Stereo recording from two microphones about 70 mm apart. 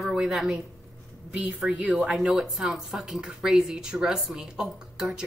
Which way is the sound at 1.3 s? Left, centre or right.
Right.